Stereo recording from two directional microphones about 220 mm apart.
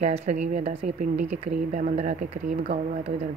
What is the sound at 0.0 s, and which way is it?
Speech, 30° right (ahead or behind).